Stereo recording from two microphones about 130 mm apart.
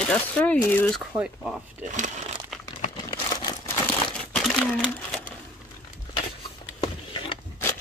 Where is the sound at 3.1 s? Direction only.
30° left (ahead or behind).